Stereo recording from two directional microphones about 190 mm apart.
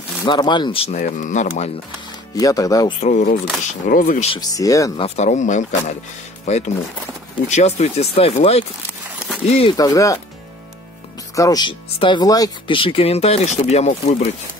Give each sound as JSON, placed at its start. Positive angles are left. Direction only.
{"t": 0.2, "sound": "speech", "side_deg": 20}
{"t": 0.9, "sound": "speech", "side_deg": 45}
{"t": 2.3, "sound": "speech", "side_deg": 20}
{"t": 3.0, "sound": "speech", "side_deg": 40}
{"t": 4.3, "sound": "speech", "side_deg": 20}
{"t": 5.0, "sound": "speech", "side_deg": 35}
{"t": 9.8, "sound": "speech", "side_deg": 20}
{"t": 11.3, "sound": "speech", "side_deg": 20}